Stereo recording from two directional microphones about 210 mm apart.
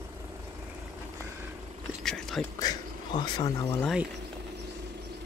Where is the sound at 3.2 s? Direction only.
15° left (ahead or behind).